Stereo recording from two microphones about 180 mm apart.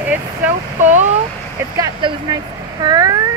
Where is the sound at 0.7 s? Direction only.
40° right (ahead or behind).